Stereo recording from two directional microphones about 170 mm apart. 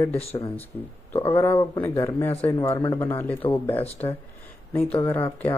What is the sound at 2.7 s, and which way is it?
Speech, 20° left (ahead or behind).